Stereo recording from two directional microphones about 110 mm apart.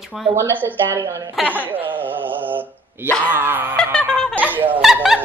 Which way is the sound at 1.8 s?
15° right (ahead or behind).